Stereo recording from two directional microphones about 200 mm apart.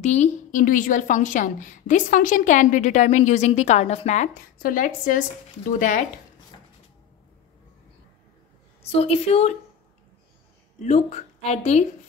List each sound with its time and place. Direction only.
0.0 s a woman's voice: 35° left (ahead or behind)
8.8 s a woman's voice: 30° left (ahead or behind)
10.8 s a woman's voice: 35° left (ahead or behind)